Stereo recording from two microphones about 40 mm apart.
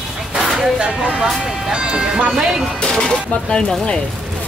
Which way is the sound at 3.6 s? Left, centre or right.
Centre.